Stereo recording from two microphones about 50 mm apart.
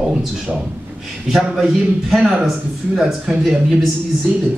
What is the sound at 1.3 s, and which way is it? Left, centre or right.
A man's voice, centre.